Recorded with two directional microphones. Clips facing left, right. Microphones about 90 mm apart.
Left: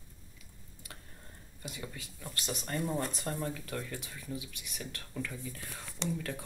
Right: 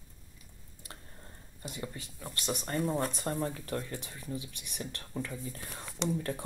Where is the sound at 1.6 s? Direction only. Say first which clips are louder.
Right 3 dB; 30° right (ahead or behind).